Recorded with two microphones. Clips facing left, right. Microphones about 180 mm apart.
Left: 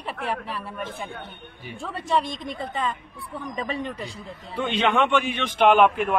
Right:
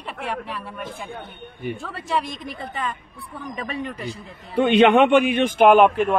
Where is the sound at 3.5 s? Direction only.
25° left (ahead or behind).